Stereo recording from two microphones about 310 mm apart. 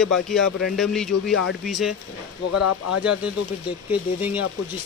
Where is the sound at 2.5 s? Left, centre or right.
Left.